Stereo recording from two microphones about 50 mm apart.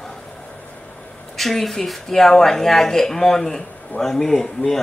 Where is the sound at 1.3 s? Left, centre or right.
Centre.